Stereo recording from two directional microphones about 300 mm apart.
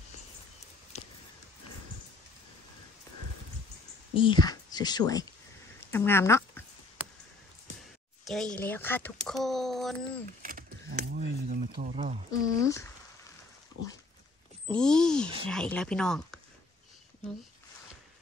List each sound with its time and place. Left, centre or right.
4.1 s speech: centre
8.3 s speech: centre
10.4 s a sound: right
11.9 s speech: right
12.3 s speech: centre
14.7 s speech: centre